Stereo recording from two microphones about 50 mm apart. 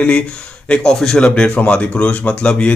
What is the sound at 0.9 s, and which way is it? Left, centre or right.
Speech, centre.